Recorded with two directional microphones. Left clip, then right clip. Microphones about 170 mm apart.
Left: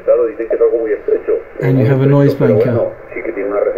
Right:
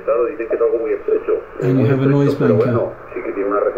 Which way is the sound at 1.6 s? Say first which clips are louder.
Left 3 dB; 60° left (ahead or behind).